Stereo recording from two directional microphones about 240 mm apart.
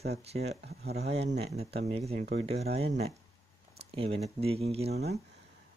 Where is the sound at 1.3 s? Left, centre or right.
Right.